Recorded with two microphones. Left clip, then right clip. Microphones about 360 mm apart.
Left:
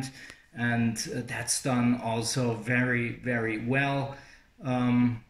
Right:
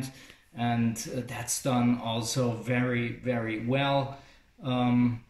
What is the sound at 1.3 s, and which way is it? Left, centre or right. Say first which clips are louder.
Speech: even; centre.